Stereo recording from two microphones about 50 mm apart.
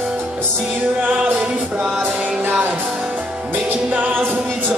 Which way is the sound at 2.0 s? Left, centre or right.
Right.